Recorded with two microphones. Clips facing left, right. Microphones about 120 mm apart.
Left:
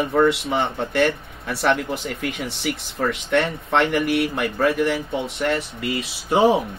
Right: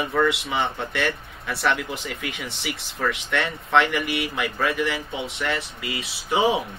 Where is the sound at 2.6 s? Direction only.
35° left (ahead or behind).